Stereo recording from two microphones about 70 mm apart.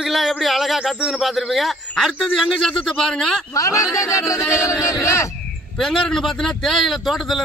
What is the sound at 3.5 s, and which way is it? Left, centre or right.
Music, left.